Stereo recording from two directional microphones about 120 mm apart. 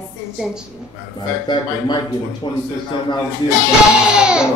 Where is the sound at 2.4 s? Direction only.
40° left (ahead or behind).